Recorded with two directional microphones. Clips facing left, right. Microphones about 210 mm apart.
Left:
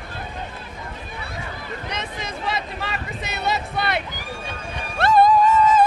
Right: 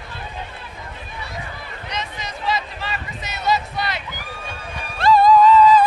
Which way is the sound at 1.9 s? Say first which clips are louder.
Right 3 dB; 60° left (ahead or behind).